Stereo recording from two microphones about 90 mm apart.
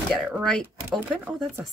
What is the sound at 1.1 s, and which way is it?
Speech, 20° right (ahead or behind).